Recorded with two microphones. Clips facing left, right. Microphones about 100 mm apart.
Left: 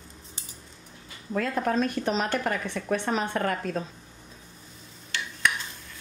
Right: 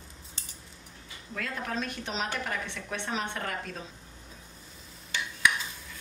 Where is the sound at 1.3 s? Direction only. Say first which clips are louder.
Left 9 dB; 40° left (ahead or behind).